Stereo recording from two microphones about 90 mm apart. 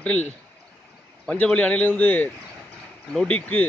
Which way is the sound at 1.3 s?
15° left (ahead or behind).